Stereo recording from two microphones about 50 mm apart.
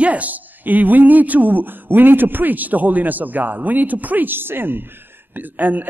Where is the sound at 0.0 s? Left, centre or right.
Right.